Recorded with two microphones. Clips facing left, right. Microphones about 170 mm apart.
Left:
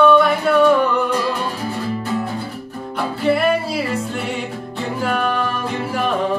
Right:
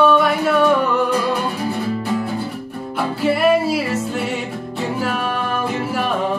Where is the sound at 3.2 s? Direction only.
5° right (ahead or behind).